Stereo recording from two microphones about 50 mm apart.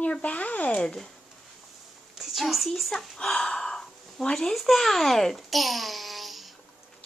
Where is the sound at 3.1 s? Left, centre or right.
Centre.